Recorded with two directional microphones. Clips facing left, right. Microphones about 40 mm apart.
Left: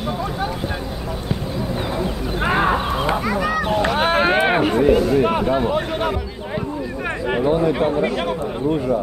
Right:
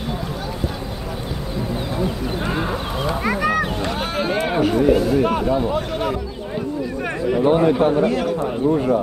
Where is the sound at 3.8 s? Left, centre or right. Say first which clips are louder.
Left 6 dB; left.